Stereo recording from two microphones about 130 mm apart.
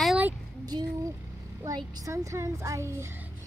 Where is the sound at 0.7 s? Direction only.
30° right (ahead or behind).